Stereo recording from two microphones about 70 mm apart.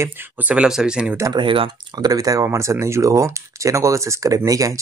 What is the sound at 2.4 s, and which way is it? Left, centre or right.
Speech, right.